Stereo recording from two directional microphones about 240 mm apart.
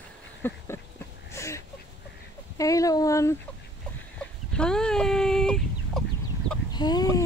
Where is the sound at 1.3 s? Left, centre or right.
Centre.